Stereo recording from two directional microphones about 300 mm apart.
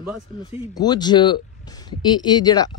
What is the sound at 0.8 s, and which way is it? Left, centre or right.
Speech, centre.